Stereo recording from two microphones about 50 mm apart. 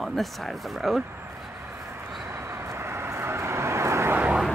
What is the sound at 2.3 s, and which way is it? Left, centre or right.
Vehicle, right.